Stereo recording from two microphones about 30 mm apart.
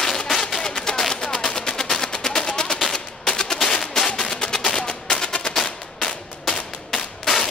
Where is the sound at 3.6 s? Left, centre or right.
Centre.